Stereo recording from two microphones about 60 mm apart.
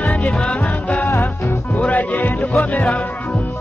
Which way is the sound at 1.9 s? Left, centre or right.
Left.